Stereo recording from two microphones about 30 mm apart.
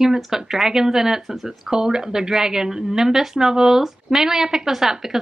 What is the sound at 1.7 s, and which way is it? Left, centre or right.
Speech, right.